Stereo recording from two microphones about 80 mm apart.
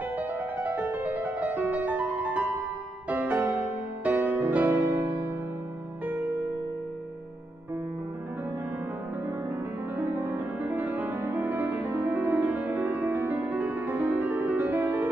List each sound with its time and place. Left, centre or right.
0.2 s music: right
9.9 s music: right